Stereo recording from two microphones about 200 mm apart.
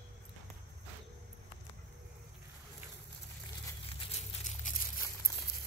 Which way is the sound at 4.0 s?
35° left (ahead or behind).